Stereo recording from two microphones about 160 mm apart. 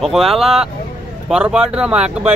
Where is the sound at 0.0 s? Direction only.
Centre (ahead or behind).